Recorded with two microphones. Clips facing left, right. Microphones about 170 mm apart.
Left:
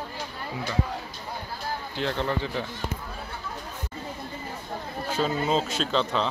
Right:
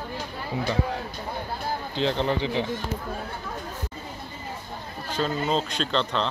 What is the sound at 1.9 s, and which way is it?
Speech, 20° right (ahead or behind).